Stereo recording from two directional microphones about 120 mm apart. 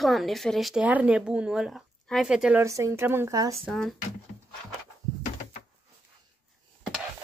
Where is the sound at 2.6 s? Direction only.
25° right (ahead or behind).